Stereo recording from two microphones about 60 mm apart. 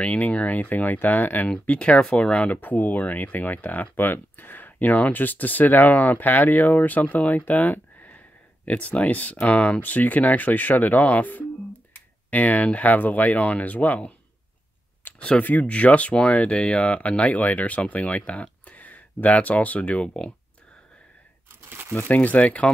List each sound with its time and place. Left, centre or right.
0.0 s speech: left
1.5 s speech: centre
15.1 s speech: centre
21.9 s speech: left